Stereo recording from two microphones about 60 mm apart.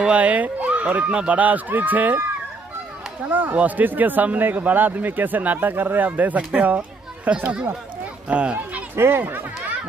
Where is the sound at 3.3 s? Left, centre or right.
Right.